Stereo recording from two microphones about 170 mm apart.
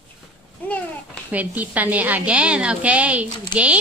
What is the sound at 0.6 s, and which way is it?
Babbling, 10° left (ahead or behind).